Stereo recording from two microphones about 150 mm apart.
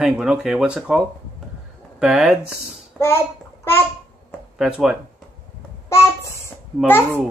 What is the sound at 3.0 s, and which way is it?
Speech, 5° left (ahead or behind).